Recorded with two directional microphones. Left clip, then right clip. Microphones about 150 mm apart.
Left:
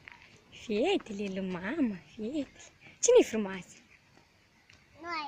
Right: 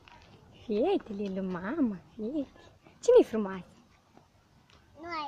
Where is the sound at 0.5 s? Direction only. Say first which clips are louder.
Right 1 dB; centre (ahead or behind).